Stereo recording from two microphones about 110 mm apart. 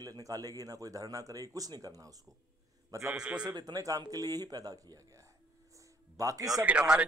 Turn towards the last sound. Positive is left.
turn(degrees=-10)  # may be behind; listen again after turning